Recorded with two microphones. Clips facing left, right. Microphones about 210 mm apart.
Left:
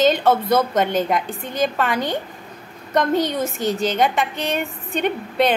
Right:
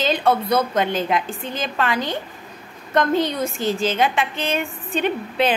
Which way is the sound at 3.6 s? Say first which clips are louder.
Left 1 dB; centre (ahead or behind).